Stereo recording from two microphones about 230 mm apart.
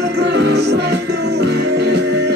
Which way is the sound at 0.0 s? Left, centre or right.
Right.